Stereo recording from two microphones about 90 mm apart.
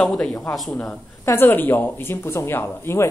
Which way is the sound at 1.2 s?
25° left (ahead or behind).